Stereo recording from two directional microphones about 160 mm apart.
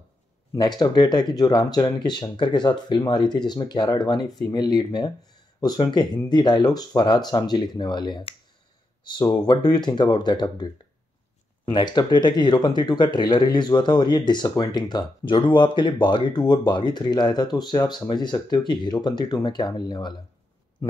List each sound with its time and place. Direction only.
0.6 s speech: 25° left (ahead or behind)